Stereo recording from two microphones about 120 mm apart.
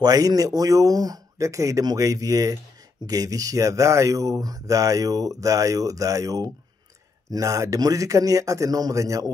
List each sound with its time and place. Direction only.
0.0 s speech: 30° right (ahead or behind)